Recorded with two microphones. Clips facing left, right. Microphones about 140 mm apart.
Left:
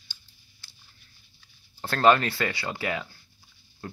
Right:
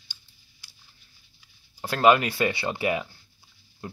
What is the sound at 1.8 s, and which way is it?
Speech, 10° right (ahead or behind).